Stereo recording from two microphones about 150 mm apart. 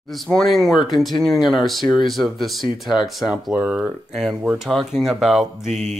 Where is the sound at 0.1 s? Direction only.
Centre (ahead or behind).